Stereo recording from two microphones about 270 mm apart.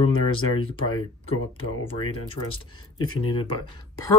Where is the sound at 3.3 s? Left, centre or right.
Centre.